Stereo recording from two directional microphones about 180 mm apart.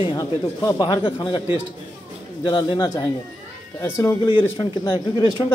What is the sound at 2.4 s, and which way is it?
A man's voice, 25° left (ahead or behind).